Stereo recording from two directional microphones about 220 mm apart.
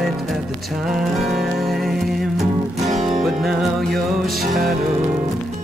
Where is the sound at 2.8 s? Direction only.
30° right (ahead or behind).